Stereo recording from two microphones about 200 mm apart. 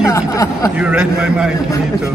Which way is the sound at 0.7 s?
5° right (ahead or behind).